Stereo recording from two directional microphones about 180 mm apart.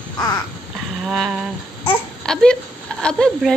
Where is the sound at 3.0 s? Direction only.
5° left (ahead or behind).